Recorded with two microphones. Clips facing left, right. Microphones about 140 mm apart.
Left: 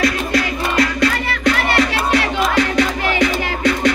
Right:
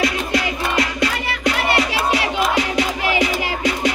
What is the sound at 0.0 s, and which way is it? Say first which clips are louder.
Music: left 2 dB; 20° right (ahead or behind).